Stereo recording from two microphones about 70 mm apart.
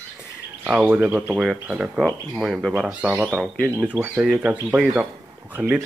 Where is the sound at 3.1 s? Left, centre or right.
Centre.